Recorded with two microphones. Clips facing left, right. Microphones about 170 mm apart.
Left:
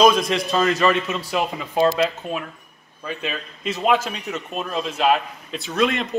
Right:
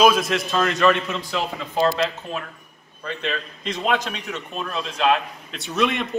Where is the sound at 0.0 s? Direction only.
5° right (ahead or behind).